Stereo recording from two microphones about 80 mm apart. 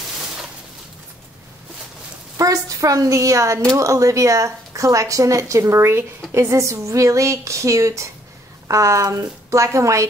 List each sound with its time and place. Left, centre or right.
2.3 s a woman's voice: right